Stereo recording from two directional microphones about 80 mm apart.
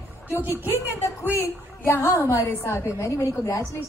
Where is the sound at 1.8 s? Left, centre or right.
Left.